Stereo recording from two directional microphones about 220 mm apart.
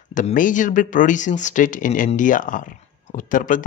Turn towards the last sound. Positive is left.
turn(degrees=35)  # may be behind; listen again after turning